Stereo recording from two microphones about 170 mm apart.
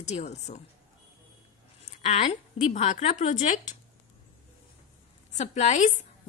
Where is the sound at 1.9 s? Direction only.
35° left (ahead or behind).